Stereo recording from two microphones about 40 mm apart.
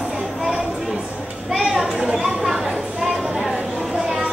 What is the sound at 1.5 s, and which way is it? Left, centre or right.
Children playing, centre.